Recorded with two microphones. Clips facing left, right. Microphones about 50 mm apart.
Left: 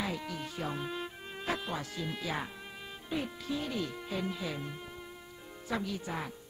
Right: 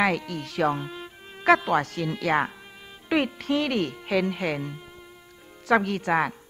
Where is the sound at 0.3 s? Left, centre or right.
Right.